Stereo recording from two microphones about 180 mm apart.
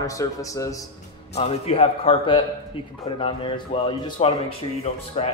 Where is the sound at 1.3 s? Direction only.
35° left (ahead or behind).